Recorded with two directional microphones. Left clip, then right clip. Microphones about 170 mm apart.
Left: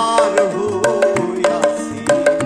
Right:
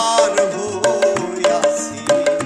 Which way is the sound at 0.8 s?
20° left (ahead or behind).